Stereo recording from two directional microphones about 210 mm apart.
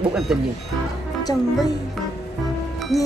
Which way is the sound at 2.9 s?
15° left (ahead or behind).